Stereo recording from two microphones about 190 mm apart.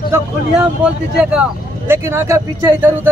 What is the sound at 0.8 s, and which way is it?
Speech, 5° right (ahead or behind).